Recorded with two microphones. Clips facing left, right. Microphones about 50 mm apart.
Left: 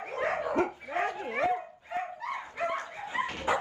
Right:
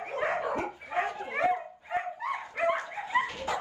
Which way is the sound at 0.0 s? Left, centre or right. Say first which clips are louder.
Right 1 dB; centre.